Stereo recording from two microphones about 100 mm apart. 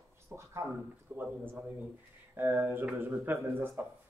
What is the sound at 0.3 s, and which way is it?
Speech, 30° right (ahead or behind).